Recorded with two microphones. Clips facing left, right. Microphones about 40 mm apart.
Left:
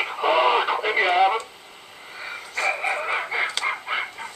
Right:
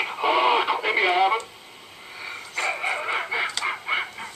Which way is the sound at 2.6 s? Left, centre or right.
Centre.